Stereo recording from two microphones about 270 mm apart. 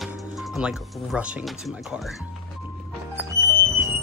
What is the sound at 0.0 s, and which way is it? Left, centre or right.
Speech, centre.